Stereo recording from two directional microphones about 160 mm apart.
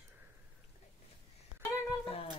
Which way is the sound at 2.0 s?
35° left (ahead or behind).